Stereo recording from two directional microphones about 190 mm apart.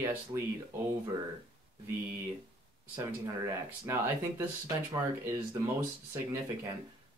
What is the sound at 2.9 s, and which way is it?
Speech, 20° right (ahead or behind).